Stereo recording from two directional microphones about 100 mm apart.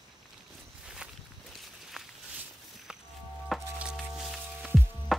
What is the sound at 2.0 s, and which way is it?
Walk, 5° right (ahead or behind).